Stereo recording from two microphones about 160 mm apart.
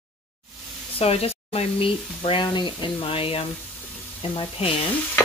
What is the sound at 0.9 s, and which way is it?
Speech, 40° left (ahead or behind).